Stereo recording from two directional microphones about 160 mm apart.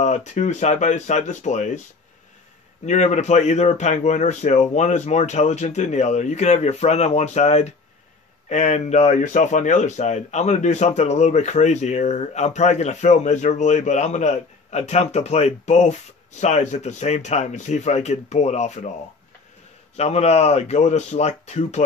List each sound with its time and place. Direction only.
0.0 s speech: 45° left (ahead or behind)
2.8 s speech: 45° left (ahead or behind)
20.0 s speech: 40° left (ahead or behind)